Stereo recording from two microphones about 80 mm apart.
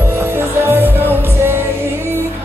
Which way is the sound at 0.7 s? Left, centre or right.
Right.